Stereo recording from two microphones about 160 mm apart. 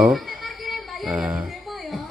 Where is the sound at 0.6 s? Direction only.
5° right (ahead or behind).